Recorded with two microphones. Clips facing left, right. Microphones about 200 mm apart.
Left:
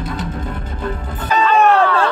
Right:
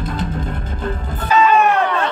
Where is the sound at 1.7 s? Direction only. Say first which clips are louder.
Left 3 dB; 15° right (ahead or behind).